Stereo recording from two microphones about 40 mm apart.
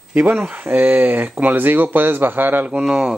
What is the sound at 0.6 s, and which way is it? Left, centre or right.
Speech, right.